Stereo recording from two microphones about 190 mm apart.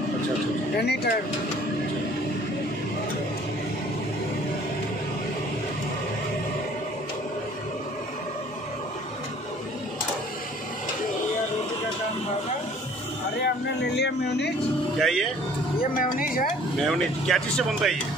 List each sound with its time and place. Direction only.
0.7 s speech: 60° left (ahead or behind)
13.9 s a sound: 60° left (ahead or behind)
15.0 s speech: centre (ahead or behind)
16.0 s music: 50° left (ahead or behind)
16.8 s speech: centre (ahead or behind)